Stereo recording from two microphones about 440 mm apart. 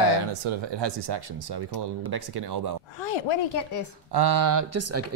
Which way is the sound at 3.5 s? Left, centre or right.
Left.